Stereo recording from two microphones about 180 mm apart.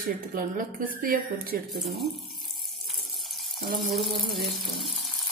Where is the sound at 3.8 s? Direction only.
Centre (ahead or behind).